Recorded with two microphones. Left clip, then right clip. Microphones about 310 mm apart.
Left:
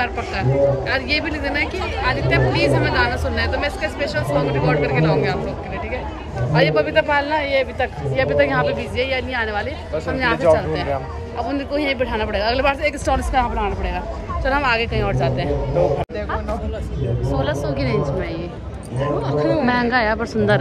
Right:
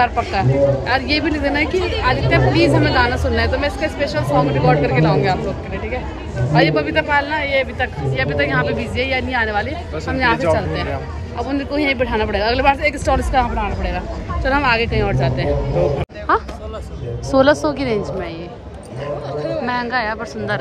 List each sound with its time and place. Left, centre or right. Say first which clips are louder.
0.0 s speech: right 5 dB; centre
6.5 s a man's voice: right 1 dB; centre
8.7 s a man's voice: right 2 dB; centre
17.3 s a woman's voice: right 10 dB; centre
19.3 s speech: left 4 dB; centre
19.6 s speech: left 2 dB; centre